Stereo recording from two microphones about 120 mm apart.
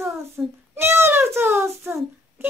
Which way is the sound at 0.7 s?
20° right (ahead or behind).